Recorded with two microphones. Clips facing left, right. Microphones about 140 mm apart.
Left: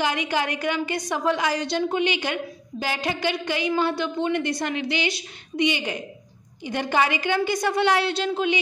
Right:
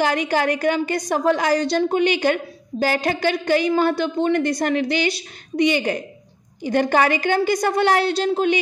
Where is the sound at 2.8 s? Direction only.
45° right (ahead or behind).